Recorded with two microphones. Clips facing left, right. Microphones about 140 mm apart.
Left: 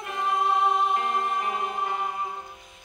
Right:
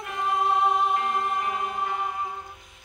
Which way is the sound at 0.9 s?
25° left (ahead or behind).